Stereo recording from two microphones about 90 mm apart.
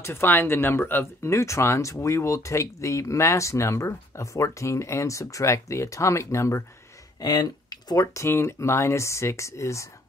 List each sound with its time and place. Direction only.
0.0 s speech: 25° left (ahead or behind)
7.2 s speech: 45° left (ahead or behind)